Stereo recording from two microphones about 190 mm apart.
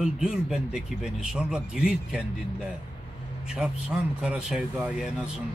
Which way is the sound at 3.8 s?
5° right (ahead or behind).